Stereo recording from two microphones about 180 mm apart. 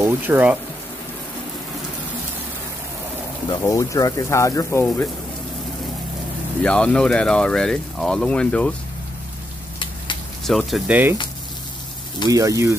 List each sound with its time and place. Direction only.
0.0 s speech: 10° right (ahead or behind)
3.4 s speech: 20° left (ahead or behind)
6.6 s speech: 5° left (ahead or behind)
10.4 s speech: centre (ahead or behind)
12.3 s speech: 20° right (ahead or behind)